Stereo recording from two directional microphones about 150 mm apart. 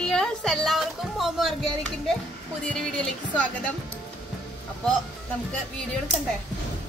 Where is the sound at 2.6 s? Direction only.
5° left (ahead or behind).